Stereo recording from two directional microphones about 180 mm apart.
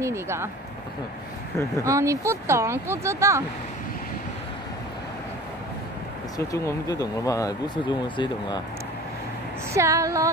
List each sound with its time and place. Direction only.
0.0 s speech: 15° right (ahead or behind)
1.8 s speech: 15° right (ahead or behind)
6.3 s speech: 15° left (ahead or behind)
9.8 s speech: 15° right (ahead or behind)